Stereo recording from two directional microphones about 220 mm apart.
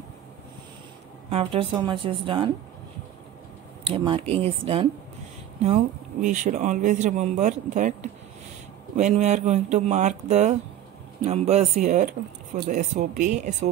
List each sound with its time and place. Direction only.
1.3 s a woman's voice: 25° right (ahead or behind)
3.8 s a woman's voice: 25° right (ahead or behind)